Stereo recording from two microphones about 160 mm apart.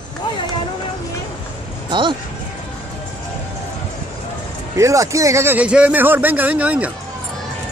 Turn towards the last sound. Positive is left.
turn(degrees=-10)  # may be behind; listen again after turning